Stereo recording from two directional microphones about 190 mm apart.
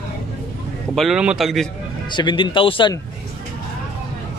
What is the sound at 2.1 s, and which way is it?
Speech, 25° left (ahead or behind).